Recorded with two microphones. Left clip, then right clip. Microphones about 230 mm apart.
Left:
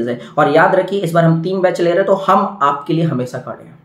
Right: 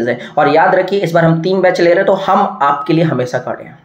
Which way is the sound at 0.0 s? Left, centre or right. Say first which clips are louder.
Right 2 dB; centre.